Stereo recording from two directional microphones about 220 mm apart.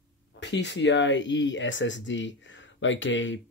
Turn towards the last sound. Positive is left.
turn(degrees=60)  # may be behind; listen again after turning